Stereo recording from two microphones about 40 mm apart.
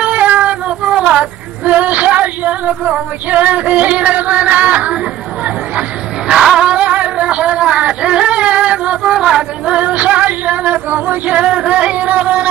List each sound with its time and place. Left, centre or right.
0.0 s cat: right
0.9 s a sound: right
1.6 s female singing: right
6.6 s a sound: right
9.8 s music: right
10.9 s music: right
11.3 s music: right